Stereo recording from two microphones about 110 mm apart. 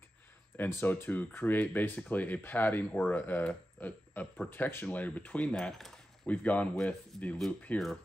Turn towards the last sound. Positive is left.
turn(degrees=5)  # may be behind; listen again after turning